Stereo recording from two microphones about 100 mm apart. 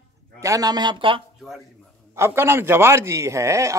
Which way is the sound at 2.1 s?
25° right (ahead or behind).